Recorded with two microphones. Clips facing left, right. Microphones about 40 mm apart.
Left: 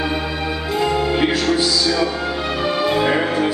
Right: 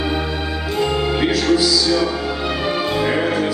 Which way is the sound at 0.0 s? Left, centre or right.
Centre.